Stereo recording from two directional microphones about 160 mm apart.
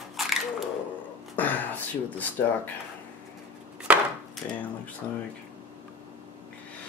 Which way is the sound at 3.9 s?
5° right (ahead or behind).